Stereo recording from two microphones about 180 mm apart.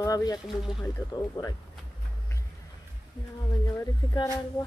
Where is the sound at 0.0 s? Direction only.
20° left (ahead or behind).